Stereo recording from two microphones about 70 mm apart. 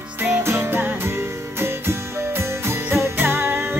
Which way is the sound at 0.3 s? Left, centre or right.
Right.